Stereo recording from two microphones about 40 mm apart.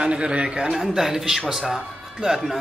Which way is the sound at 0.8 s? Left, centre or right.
Centre.